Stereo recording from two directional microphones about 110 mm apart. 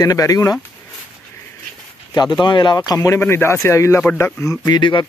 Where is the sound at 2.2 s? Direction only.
40° left (ahead or behind).